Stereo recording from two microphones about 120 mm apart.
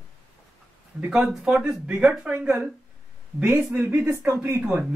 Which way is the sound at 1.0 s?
5° right (ahead or behind).